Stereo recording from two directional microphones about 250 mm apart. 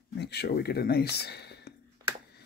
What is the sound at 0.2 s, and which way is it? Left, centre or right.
Speech, left.